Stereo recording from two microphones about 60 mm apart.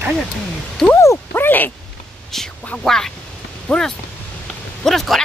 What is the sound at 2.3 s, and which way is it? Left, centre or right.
Speech, centre.